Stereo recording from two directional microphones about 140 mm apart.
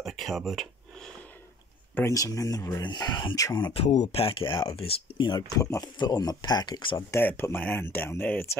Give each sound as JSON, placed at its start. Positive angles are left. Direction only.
{"t": 0.0, "sound": "a sound", "side_deg": 0}
{"t": 2.0, "sound": "speech", "side_deg": 20}
{"t": 3.7, "sound": "speech", "side_deg": 55}
{"t": 7.0, "sound": "speech", "side_deg": 20}